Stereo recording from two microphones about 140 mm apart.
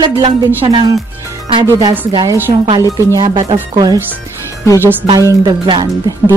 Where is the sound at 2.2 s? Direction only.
15° right (ahead or behind).